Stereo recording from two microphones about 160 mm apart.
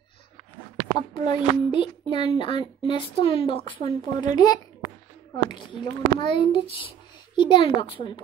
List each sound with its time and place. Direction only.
0.9 s a child's voice: 30° left (ahead or behind)